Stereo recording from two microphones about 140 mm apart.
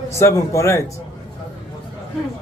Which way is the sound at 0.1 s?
20° left (ahead or behind).